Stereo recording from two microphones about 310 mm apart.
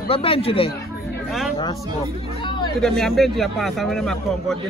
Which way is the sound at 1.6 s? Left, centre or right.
Centre.